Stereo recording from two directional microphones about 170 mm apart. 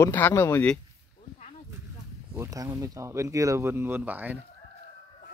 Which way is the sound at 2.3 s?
20° right (ahead or behind).